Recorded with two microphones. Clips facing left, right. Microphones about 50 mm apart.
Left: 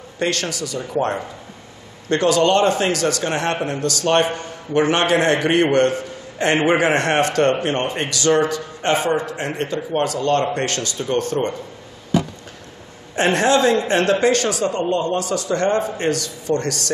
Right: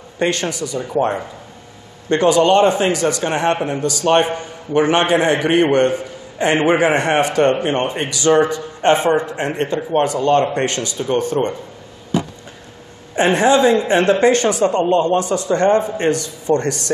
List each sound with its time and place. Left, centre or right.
0.2 s a man's voice: right
9.8 s a man's voice: centre
13.1 s a man's voice: centre